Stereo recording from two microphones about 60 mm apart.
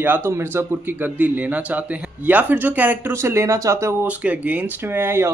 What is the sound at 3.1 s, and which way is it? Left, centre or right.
Speech, right.